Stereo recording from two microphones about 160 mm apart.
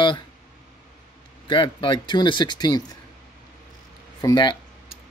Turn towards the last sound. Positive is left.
turn(degrees=25)  # may be behind; listen again after turning